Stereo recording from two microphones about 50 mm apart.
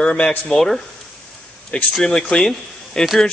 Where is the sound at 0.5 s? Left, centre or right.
Centre.